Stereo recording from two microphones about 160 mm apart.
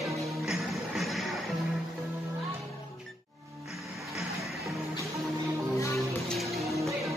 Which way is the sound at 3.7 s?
Centre (ahead or behind).